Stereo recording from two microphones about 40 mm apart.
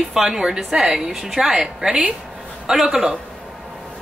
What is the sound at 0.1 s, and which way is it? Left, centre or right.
Speech, centre.